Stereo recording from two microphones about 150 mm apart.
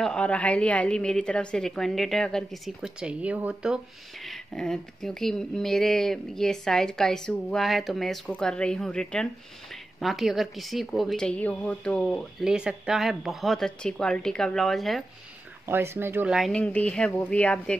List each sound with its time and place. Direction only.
0.0 s a woman's voice: 5° left (ahead or behind)
4.3 s a woman's voice: 5° left (ahead or behind)
15.6 s speech: 15° right (ahead or behind)
16.3 s speech: 5° left (ahead or behind)